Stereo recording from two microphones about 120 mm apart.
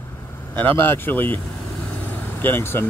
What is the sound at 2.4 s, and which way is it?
Speech, 20° left (ahead or behind).